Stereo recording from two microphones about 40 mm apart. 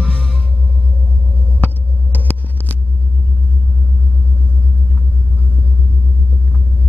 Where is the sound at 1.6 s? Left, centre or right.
Left.